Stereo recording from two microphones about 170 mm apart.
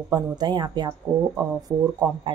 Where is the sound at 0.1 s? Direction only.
25° right (ahead or behind).